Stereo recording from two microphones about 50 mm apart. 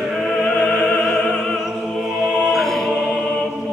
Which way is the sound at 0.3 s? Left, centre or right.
Centre.